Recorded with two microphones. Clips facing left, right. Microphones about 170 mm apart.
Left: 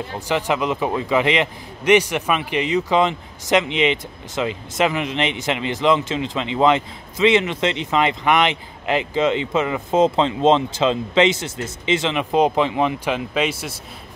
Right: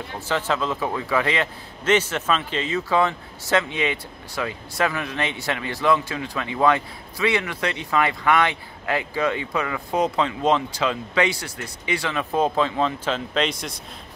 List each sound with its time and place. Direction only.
0.3 s a man's voice: 15° left (ahead or behind)